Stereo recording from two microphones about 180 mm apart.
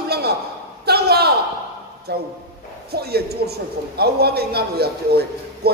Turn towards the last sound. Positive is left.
turn(degrees=-60)  # may be behind; listen again after turning